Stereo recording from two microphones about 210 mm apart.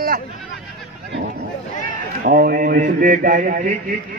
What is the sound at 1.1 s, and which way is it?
Chatter, 50° right (ahead or behind).